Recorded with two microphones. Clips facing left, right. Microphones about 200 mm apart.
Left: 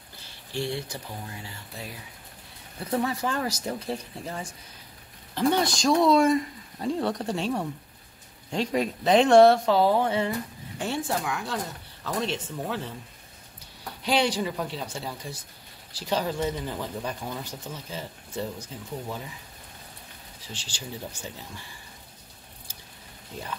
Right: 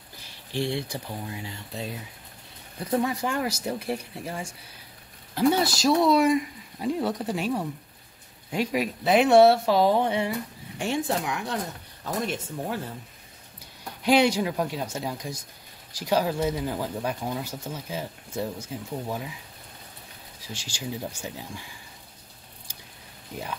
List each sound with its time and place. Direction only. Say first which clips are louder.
0.5 s speech: right 2 dB; 15° right (ahead or behind)
14.0 s speech: right 4 dB; 10° right (ahead or behind)
20.3 s speech: right 3 dB; 10° right (ahead or behind)